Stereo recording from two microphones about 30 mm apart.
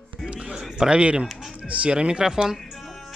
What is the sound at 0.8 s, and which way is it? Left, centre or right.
Speech, right.